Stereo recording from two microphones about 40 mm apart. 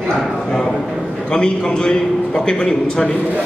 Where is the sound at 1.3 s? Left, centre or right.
Centre.